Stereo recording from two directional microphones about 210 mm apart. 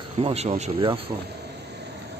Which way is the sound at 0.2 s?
30° right (ahead or behind).